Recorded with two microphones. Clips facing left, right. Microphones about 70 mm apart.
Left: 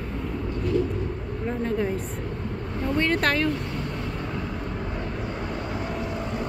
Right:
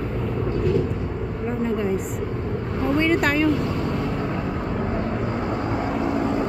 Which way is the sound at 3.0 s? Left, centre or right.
Centre.